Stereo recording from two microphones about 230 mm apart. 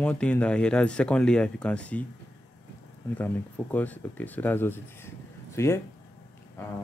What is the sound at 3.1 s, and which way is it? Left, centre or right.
Speech, centre.